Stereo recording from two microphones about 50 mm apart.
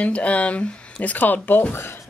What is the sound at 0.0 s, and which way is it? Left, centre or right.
Speech, left.